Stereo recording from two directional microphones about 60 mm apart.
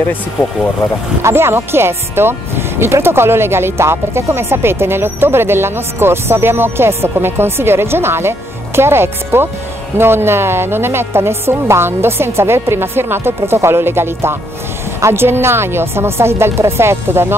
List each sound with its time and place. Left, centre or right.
1.2 s speech: right